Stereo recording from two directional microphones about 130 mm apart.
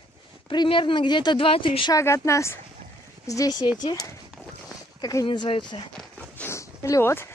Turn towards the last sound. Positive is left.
turn(degrees=20)  # may be behind; listen again after turning